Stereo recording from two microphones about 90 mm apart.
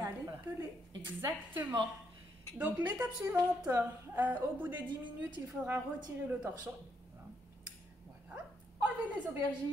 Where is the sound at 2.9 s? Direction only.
20° right (ahead or behind).